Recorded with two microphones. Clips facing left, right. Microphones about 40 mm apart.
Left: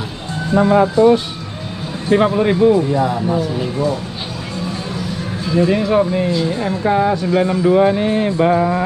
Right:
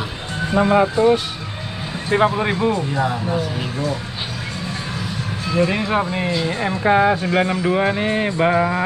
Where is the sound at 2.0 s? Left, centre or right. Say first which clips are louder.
Left 4 dB; centre.